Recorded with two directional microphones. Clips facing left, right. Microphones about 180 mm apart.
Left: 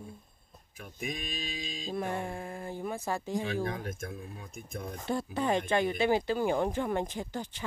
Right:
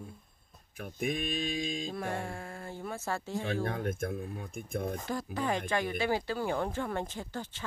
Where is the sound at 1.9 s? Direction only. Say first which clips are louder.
Left 2 dB; 20° left (ahead or behind).